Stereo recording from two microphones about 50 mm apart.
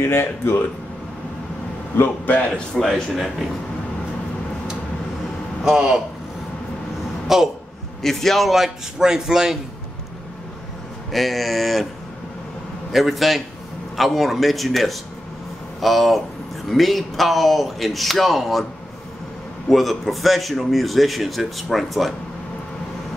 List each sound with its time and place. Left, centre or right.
0.0 s speech: left
2.5 s speech: centre
2.9 s a man's voice: centre
5.6 s speech: centre
7.3 s speech: centre
8.0 s a man's voice: centre
11.1 s a man's voice: centre
12.9 s a man's voice: centre
19.7 s a man's voice: centre